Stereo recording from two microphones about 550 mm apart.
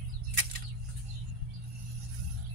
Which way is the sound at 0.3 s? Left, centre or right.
Right.